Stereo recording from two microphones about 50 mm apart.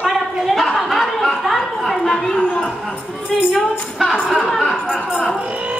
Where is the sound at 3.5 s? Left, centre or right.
Centre.